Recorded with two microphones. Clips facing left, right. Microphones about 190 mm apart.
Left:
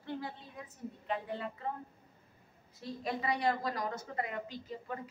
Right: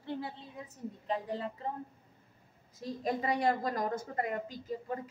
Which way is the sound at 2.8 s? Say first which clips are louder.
Right 3 dB; 40° right (ahead or behind).